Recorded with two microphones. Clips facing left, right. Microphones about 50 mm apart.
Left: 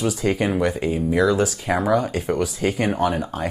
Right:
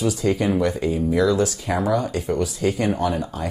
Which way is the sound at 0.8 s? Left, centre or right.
Left.